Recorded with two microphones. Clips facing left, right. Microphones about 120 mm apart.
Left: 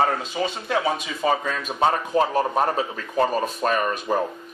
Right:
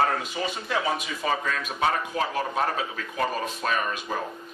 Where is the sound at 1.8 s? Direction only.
35° left (ahead or behind).